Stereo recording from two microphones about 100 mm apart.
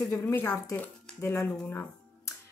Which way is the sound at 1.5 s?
15° left (ahead or behind).